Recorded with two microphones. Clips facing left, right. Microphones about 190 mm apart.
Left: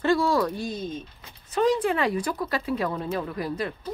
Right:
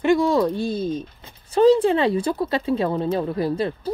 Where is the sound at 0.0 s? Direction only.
20° right (ahead or behind).